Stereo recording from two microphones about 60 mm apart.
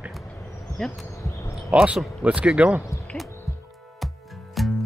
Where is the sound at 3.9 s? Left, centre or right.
Centre.